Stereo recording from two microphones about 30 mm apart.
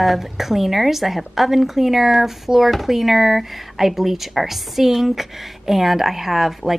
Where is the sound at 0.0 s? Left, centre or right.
Centre.